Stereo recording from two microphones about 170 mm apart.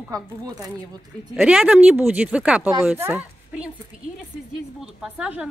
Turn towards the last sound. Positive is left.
turn(degrees=-5)  # may be behind; listen again after turning